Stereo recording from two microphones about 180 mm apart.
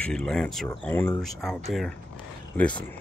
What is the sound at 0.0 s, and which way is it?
Speech, 5° left (ahead or behind).